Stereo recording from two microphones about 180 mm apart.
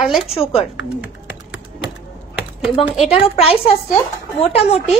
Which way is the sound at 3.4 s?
35° left (ahead or behind).